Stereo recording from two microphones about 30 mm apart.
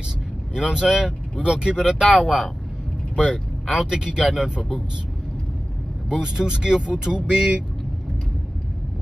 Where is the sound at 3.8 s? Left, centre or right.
Right.